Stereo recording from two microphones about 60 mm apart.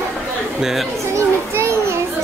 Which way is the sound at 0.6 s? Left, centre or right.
Centre.